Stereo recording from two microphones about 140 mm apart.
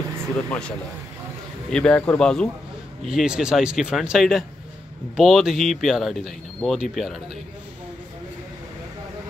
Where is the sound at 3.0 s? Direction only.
5° right (ahead or behind).